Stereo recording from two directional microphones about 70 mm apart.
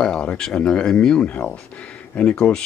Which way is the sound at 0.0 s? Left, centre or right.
Centre.